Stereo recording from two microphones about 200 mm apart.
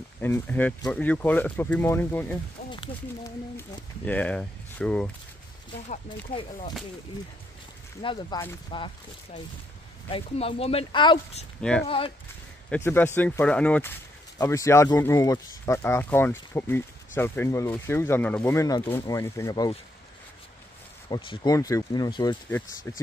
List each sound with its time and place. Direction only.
0.2 s speech: 10° left (ahead or behind)
2.7 s speech: 25° left (ahead or behind)
3.5 s speech: 10° left (ahead or behind)
6.0 s speech: 25° left (ahead or behind)
8.0 s speech: 25° left (ahead or behind)
10.1 s speech: 30° left (ahead or behind)
12.6 s speech: 10° left (ahead or behind)
21.1 s speech: 25° left (ahead or behind)